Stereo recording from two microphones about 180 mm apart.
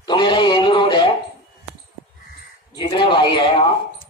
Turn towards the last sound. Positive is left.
turn(degrees=30)  # may be behind; listen again after turning